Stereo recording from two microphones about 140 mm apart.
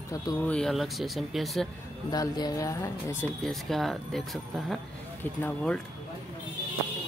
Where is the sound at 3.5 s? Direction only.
Centre (ahead or behind).